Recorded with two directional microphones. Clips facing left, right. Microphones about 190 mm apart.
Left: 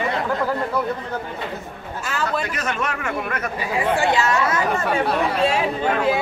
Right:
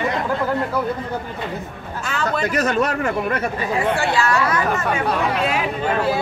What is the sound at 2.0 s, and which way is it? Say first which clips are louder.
Speech: right 1 dB; 5° left (ahead or behind).